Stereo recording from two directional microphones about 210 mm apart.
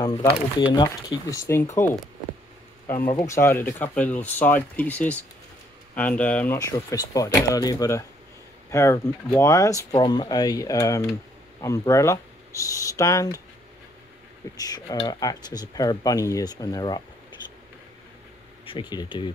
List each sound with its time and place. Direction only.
0.0 s speech: 15° left (ahead or behind)
3.1 s speech: 15° left (ahead or behind)
14.6 s speech: 20° left (ahead or behind)
18.7 s speech: 20° left (ahead or behind)